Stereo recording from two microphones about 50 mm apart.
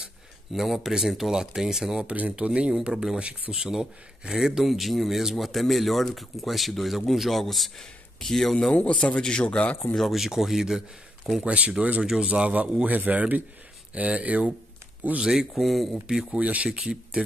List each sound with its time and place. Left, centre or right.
0.5 s speech: centre
2.0 s a man's voice: right; by 8.5 s centre
8.7 s a man's voice: left
9.9 s speech: centre
11.4 s a man's voice: right
12.0 s speech: centre
12.3 s a man's voice: right
15.1 s speech: centre
16.1 s speech: centre
16.3 s a man's voice: right
16.8 s speech: centre